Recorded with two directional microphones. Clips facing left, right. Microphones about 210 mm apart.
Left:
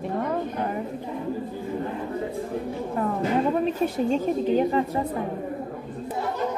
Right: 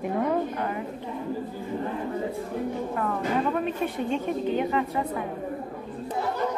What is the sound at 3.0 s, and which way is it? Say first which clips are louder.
Speech: left 4 dB; 25° left (ahead or behind).